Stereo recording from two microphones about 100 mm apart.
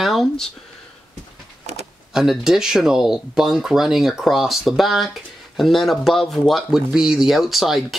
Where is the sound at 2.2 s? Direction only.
5° right (ahead or behind).